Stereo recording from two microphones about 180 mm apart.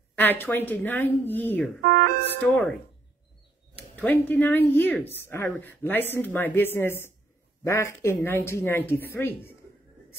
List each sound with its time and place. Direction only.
0.1 s speech: 10° left (ahead or behind)
1.9 s speech: 55° right (ahead or behind)
3.7 s speech: 10° left (ahead or behind)